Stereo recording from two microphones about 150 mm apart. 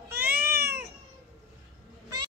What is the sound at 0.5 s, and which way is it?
Cat, 90° right.